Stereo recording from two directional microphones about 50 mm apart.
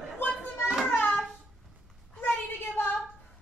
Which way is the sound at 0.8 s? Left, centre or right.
Left.